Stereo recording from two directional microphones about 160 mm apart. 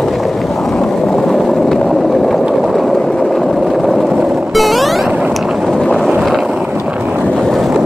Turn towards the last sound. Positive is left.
turn(degrees=0)  # may be behind; listen again after turning